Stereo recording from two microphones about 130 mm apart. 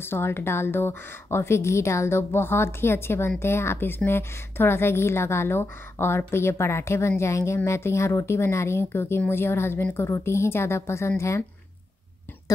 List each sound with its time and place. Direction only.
0.0 s a woman's voice: 20° left (ahead or behind)